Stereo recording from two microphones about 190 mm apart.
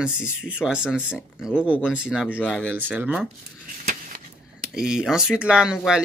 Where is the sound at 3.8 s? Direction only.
45° right (ahead or behind).